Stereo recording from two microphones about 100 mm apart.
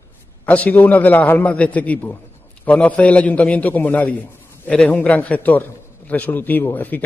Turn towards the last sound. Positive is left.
turn(degrees=15)  # may be behind; listen again after turning